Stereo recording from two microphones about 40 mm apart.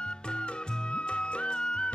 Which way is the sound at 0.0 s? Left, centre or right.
Left.